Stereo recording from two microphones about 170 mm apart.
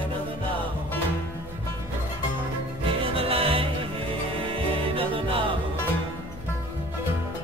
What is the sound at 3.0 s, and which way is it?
Music, 35° right (ahead or behind).